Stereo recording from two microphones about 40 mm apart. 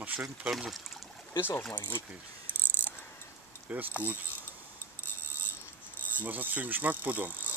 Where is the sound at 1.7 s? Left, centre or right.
Left.